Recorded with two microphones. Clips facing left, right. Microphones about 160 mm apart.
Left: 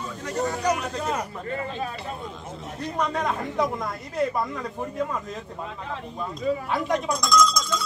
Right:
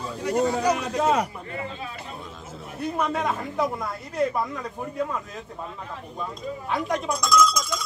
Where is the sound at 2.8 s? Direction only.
5° right (ahead or behind).